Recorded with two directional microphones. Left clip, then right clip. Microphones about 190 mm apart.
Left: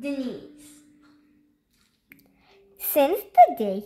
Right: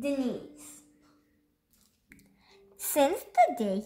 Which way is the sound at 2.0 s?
50° left (ahead or behind).